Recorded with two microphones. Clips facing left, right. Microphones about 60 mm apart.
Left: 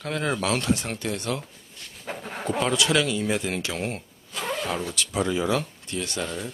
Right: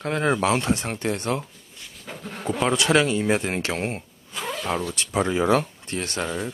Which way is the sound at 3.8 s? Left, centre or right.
Right.